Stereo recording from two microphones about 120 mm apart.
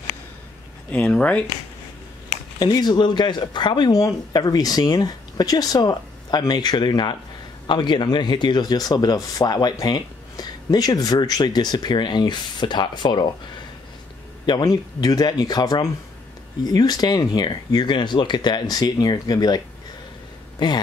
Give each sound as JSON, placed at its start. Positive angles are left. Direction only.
{"t": 0.9, "sound": "speech", "side_deg": 10}
{"t": 2.6, "sound": "speech", "side_deg": 35}
{"t": 14.4, "sound": "speech", "side_deg": 35}